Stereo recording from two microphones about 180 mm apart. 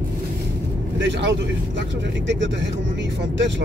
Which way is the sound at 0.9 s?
80° right.